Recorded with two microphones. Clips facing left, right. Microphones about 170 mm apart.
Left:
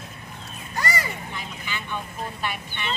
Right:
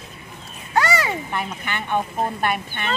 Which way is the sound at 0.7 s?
70° right (ahead or behind).